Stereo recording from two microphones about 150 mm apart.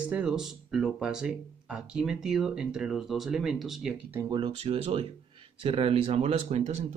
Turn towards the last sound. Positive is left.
turn(degrees=-45)  # may be behind; listen again after turning